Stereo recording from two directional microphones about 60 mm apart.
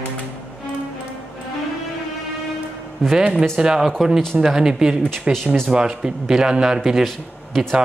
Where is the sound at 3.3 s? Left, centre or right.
Centre.